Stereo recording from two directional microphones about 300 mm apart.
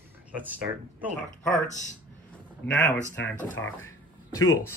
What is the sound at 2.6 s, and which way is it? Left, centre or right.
Speech, left.